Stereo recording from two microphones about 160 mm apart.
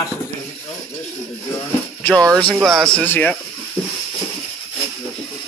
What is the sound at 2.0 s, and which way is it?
Speech, 5° left (ahead or behind).